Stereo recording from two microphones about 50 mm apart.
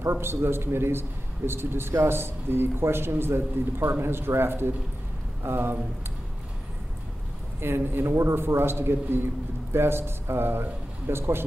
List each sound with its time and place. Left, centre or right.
0.0 s a man's voice: right
7.6 s a man's voice: right
8.2 s a man's voice: right